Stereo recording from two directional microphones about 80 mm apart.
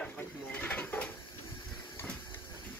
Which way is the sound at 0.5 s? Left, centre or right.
Centre.